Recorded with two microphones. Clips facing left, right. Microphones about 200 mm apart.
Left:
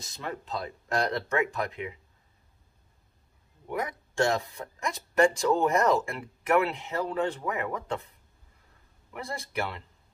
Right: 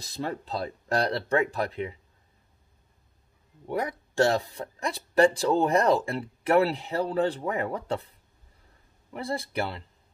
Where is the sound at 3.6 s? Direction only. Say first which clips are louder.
Right 3 dB; 35° right (ahead or behind).